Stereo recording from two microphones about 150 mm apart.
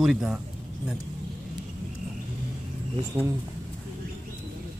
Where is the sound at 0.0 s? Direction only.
5° right (ahead or behind).